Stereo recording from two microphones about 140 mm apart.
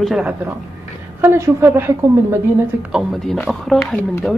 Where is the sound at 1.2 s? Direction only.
20° right (ahead or behind).